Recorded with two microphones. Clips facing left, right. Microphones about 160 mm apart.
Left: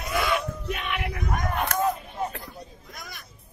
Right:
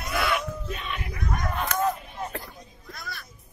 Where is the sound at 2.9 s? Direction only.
15° left (ahead or behind).